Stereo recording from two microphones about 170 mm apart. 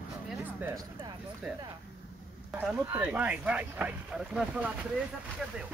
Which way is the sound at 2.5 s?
10° right (ahead or behind).